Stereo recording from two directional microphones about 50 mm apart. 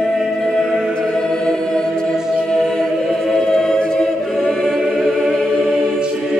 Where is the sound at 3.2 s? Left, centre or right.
Centre.